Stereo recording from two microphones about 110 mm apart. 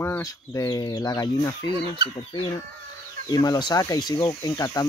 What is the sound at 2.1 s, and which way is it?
Speech, 55° left (ahead or behind).